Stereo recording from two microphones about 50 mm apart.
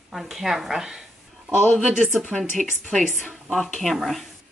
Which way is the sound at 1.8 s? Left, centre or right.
Centre.